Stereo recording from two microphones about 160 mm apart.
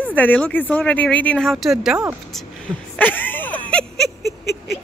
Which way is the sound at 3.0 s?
10° left (ahead or behind).